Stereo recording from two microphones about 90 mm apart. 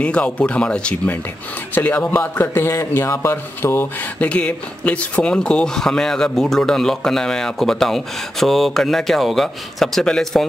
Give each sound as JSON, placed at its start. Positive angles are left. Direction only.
{"t": 0.0, "sound": "a man's voice", "side_deg": 10}
{"t": 4.2, "sound": "speech", "side_deg": 15}